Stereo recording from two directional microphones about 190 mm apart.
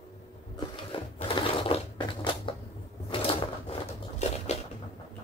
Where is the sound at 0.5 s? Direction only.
25° left (ahead or behind).